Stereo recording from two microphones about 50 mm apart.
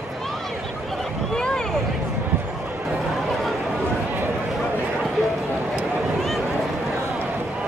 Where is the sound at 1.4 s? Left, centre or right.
Centre.